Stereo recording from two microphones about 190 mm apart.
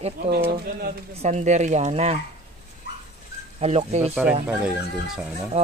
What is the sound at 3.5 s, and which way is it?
Speech, 35° right (ahead or behind).